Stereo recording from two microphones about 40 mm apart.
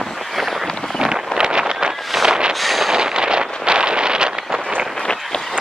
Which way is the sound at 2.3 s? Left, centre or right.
Centre.